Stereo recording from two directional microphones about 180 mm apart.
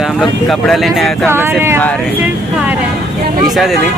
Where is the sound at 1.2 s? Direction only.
10° right (ahead or behind).